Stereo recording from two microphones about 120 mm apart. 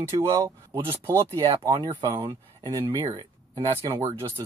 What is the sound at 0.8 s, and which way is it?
Speech, 25° right (ahead or behind).